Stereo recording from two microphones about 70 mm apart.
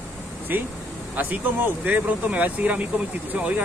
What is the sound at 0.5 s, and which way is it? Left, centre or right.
Speech, right.